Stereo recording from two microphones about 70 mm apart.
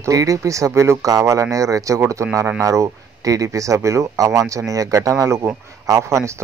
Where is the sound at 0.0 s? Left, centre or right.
Right.